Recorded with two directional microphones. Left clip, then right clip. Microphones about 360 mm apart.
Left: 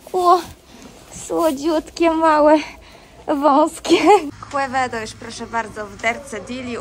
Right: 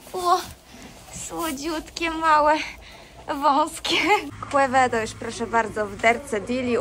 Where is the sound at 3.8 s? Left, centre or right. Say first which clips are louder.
Left 7 dB; centre.